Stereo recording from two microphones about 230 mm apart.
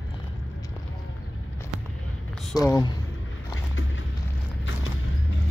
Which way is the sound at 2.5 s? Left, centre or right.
Centre.